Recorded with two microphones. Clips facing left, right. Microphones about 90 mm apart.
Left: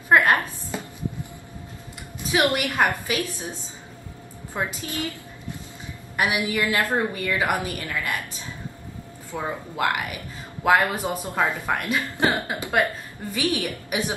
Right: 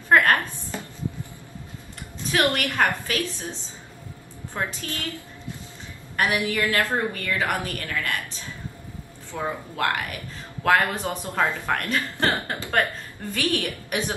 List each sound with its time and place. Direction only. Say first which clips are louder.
0.1 s chopping: even; 15° left (ahead or behind)
2.1 s speech: left 1 dB; 15° left (ahead or behind)
4.6 s speech: left 2 dB; 15° left (ahead or behind)
9.3 s speech: even; 15° left (ahead or behind)